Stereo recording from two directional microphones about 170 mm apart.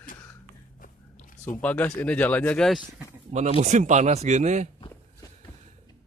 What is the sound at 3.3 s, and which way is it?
Speech, 40° right (ahead or behind).